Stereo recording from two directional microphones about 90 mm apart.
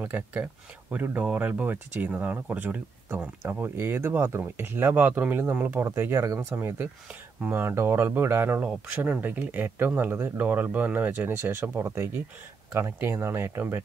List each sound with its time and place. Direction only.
0.0 s speech: 20° right (ahead or behind)